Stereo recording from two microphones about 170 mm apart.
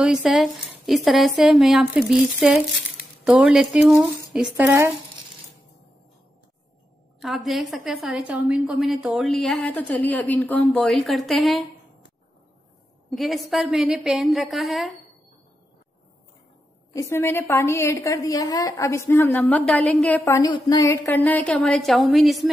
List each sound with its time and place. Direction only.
0.0 s a woman's voice: 5° right (ahead or behind)
7.2 s a woman's voice: centre (ahead or behind)
13.1 s a woman's voice: centre (ahead or behind)
16.9 s a woman's voice: 15° left (ahead or behind)
20.4 s a woman's voice: 25° left (ahead or behind); by 22.5 s centre (ahead or behind)